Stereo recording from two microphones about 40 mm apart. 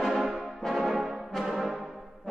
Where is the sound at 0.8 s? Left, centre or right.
Centre.